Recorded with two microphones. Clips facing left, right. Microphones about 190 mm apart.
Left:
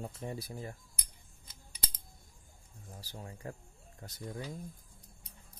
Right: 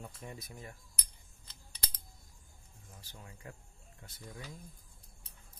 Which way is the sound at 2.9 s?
35° left (ahead or behind).